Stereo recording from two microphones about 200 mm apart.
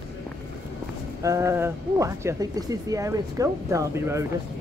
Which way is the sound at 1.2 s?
15° right (ahead or behind).